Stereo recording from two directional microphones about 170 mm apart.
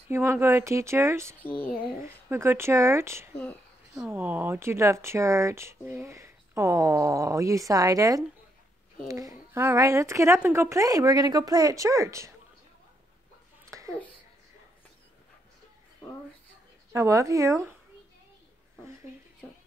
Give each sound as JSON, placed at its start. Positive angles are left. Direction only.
{"t": 0.1, "sound": "a woman's voice", "side_deg": -15}
{"t": 13.7, "sound": "a sound", "side_deg": -20}
{"t": 16.9, "sound": "speech", "side_deg": -20}